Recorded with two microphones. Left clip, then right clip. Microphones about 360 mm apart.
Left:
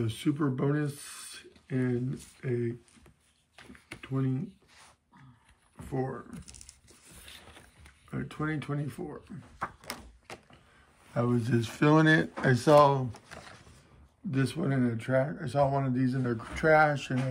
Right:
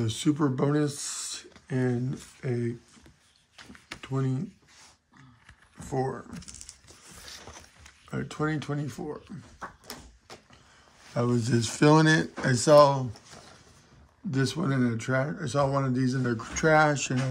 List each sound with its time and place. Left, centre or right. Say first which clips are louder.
0.0 s speech: right 4 dB; centre
3.9 s computer keyboard: right 2 dB; centre
5.9 s speech: right 4 dB; centre
8.1 s speech: right 4 dB; centre
9.8 s a sound: left 2 dB; left
11.1 s speech: right 2 dB; centre
14.3 s speech: right 2 dB; centre